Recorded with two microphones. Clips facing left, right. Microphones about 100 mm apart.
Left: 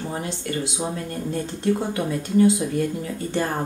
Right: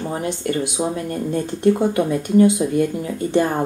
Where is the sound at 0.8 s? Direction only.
30° right (ahead or behind).